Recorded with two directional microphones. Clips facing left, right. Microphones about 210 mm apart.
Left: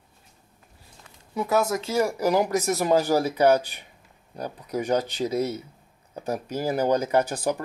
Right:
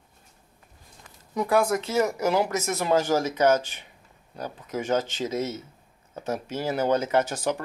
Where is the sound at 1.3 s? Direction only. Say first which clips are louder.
Right 1 dB; 5° left (ahead or behind).